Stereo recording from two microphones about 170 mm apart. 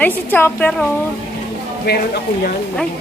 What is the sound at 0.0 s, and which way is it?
Speech, 10° left (ahead or behind).